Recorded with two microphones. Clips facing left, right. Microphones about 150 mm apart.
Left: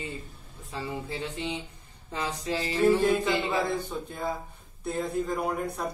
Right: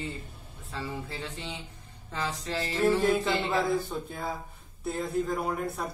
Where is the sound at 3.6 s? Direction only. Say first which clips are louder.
Right 2 dB; centre (ahead or behind).